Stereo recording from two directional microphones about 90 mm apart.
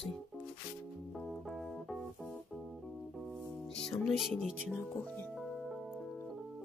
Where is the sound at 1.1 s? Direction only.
Centre (ahead or behind).